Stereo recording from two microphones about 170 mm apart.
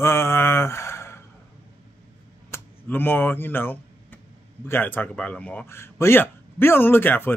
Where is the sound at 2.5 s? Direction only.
10° left (ahead or behind).